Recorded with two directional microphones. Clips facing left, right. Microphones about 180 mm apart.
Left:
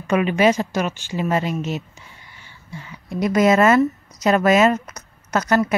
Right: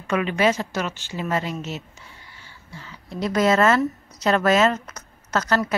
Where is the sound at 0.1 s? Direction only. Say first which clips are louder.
Left 4 dB; 15° left (ahead or behind).